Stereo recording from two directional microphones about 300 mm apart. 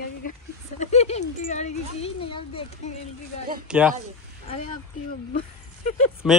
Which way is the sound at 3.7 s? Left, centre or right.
Centre.